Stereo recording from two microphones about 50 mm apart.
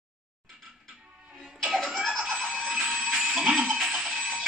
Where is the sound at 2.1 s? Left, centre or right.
Centre.